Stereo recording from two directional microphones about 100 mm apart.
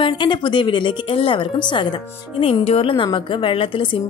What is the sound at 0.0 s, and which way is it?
A woman's voice, 55° left (ahead or behind).